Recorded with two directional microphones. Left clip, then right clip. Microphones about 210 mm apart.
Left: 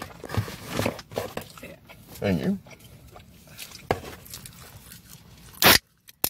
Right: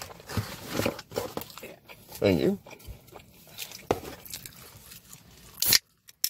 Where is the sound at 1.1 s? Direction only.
25° right (ahead or behind).